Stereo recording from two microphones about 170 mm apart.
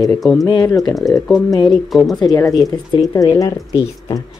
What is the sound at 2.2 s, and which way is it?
Speech, 20° left (ahead or behind).